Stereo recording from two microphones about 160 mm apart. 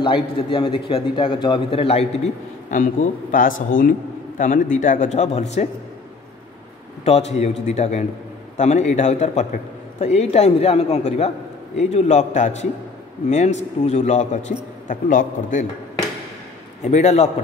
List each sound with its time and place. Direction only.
0.0 s a man's voice: 35° left (ahead or behind)
2.7 s a man's voice: 50° left (ahead or behind)
7.1 s a man's voice: 40° left (ahead or behind)
16.8 s a man's voice: 45° left (ahead or behind)